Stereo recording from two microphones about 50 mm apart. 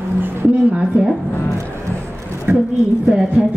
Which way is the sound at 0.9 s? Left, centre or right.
Right.